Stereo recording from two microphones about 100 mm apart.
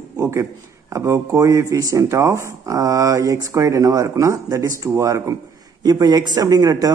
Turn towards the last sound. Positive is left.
turn(degrees=-40)  # may be behind; listen again after turning